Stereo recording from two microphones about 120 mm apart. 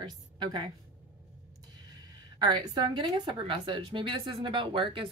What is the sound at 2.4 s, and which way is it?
A woman's voice, 35° right (ahead or behind).